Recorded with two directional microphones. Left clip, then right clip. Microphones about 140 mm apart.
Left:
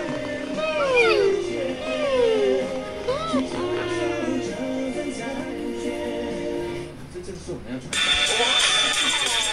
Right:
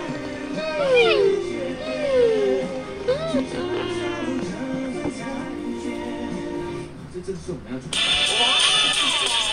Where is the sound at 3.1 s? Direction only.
25° left (ahead or behind).